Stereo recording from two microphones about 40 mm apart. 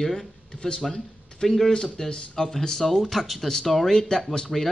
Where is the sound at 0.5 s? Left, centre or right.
Left.